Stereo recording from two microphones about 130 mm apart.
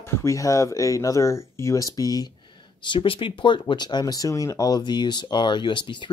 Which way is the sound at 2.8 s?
40° left (ahead or behind).